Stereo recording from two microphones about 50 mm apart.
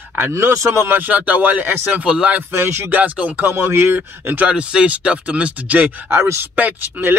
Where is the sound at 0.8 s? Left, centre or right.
Right.